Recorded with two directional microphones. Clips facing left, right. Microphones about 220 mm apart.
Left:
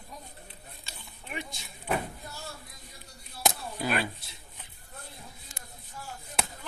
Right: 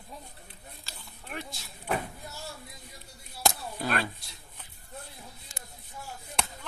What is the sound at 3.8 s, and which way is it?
Speech, 5° left (ahead or behind).